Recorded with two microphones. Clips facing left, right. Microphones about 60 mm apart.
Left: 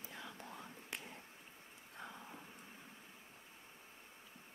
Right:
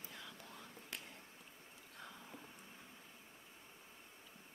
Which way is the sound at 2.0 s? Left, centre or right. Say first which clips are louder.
Left 3 dB; centre.